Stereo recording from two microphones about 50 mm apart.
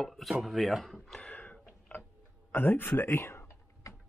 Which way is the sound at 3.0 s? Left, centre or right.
Left.